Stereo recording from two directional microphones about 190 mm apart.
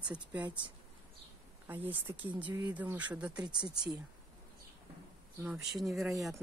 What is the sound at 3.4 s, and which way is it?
Speech, 25° right (ahead or behind).